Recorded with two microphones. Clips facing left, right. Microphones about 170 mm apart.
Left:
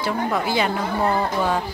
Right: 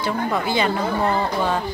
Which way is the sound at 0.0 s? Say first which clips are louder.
Even; 5° left (ahead or behind).